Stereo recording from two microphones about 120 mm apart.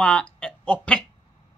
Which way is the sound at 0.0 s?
10° left (ahead or behind).